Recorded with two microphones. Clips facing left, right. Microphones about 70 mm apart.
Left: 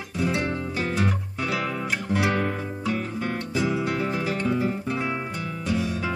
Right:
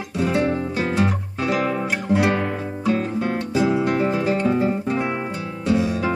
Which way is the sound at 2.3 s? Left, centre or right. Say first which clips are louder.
Right 3 dB; right.